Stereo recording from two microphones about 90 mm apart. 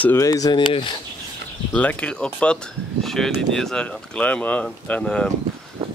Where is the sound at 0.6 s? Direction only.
70° left (ahead or behind).